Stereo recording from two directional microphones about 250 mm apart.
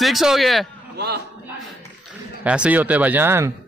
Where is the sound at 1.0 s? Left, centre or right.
Right.